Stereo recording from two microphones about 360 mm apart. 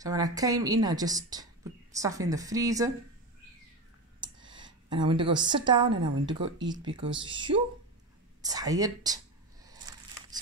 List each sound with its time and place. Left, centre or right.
0.0 s speech: centre
4.4 s a sound: right
4.8 s speech: centre